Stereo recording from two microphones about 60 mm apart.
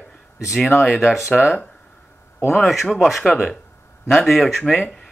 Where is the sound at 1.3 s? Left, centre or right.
Centre.